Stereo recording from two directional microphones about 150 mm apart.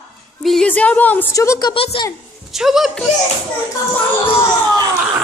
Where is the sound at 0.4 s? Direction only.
5° left (ahead or behind); by 1.7 s 20° left (ahead or behind).